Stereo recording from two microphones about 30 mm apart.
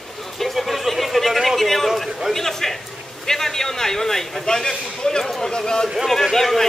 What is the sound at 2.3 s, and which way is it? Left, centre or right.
A man's voice, centre.